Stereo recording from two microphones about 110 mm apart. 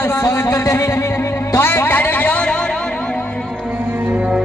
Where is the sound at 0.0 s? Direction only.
25° left (ahead or behind); by 3.2 s 10° left (ahead or behind).